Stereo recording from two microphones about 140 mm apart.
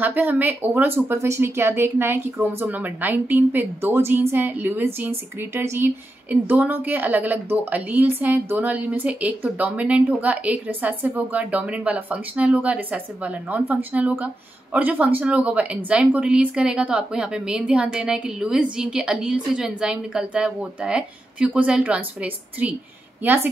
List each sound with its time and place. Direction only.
0.0 s a woman's voice: 10° right (ahead or behind)